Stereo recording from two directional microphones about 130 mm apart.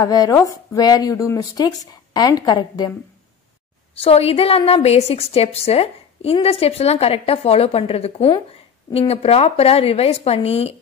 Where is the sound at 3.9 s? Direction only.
50° left (ahead or behind).